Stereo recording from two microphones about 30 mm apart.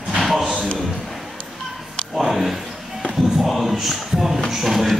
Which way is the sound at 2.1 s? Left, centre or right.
Centre.